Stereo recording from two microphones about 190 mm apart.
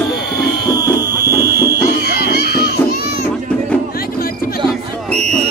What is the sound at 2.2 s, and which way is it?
Music, 60° left (ahead or behind).